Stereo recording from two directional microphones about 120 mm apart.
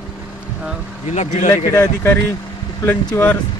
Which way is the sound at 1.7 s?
15° left (ahead or behind).